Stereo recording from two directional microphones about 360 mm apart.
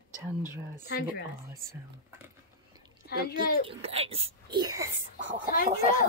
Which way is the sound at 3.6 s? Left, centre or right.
Centre.